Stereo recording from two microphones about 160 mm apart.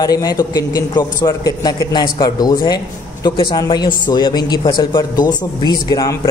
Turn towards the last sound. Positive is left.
turn(degrees=25)  # may be behind; listen again after turning